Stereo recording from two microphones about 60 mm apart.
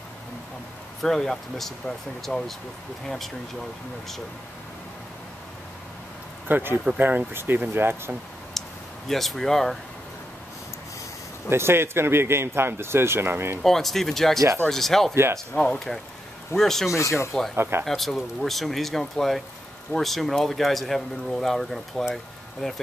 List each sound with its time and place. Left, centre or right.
1.0 s speech: centre
6.4 s speech: right
8.5 s a sound: centre
11.4 s speech: right
13.6 s speech: centre
15.5 s speech: centre
16.5 s speech: centre
16.9 s speech: left
17.6 s speech: right
17.8 s speech: centre